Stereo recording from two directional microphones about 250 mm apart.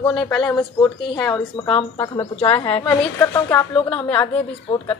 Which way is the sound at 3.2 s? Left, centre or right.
Centre.